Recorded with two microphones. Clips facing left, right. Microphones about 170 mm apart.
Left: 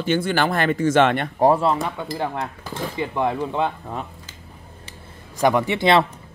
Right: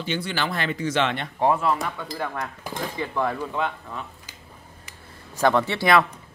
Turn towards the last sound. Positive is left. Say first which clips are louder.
# left 2 dB
turn(degrees=25)  # may be behind; listen again after turning